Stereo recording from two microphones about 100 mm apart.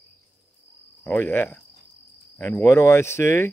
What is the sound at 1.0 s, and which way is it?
Speech, 20° left (ahead or behind).